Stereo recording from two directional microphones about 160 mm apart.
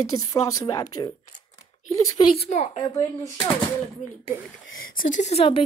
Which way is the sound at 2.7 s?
25° left (ahead or behind).